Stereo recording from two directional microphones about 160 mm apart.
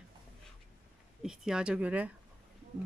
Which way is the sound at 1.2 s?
5° right (ahead or behind).